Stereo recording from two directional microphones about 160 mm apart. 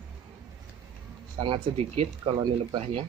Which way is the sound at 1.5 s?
35° right (ahead or behind).